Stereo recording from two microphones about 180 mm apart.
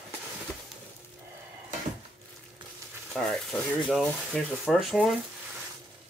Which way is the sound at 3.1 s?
5° left (ahead or behind).